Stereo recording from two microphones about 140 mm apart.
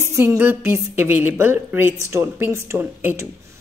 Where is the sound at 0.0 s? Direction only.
20° right (ahead or behind).